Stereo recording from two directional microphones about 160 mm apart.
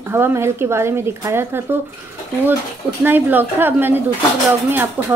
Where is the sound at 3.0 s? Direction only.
10° right (ahead or behind).